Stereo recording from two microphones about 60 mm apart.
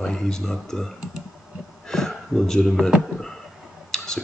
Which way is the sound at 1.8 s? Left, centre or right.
Centre.